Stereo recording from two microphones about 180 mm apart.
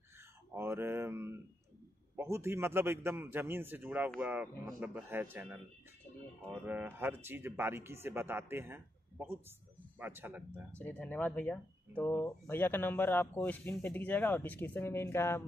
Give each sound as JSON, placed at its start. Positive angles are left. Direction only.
{"t": 0.6, "sound": "a sound", "side_deg": -15}
{"t": 2.1, "sound": "speech", "side_deg": -15}
{"t": 6.6, "sound": "speech", "side_deg": -10}
{"t": 10.8, "sound": "speech", "side_deg": 10}